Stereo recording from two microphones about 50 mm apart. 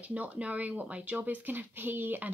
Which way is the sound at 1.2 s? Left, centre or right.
Right.